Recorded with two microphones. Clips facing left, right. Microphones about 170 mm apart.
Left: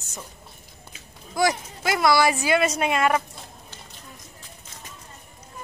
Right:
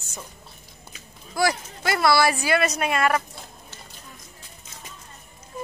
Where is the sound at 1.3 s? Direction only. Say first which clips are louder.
Left 1 dB; 15° left (ahead or behind).